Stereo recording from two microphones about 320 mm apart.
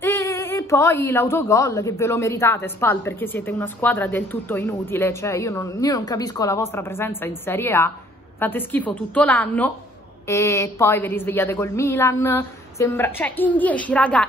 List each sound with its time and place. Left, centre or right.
0.0 s a woman's voice: centre